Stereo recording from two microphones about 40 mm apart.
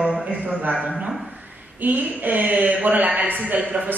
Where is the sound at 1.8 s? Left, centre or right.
Right.